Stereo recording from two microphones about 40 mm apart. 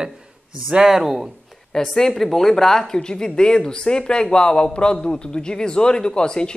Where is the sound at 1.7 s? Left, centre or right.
Centre.